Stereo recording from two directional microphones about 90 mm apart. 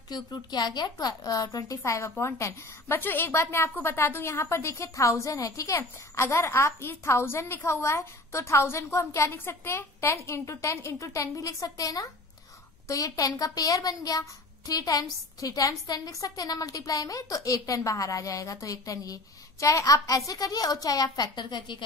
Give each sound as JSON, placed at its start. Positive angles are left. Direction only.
{"t": 0.1, "sound": "a woman's voice", "side_deg": 50}